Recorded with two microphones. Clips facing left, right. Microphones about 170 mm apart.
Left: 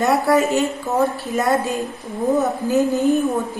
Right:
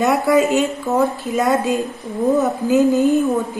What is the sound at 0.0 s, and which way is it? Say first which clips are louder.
A woman's voice: right 1 dB; 15° right (ahead or behind).